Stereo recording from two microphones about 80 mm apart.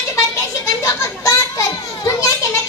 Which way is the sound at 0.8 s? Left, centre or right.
Left.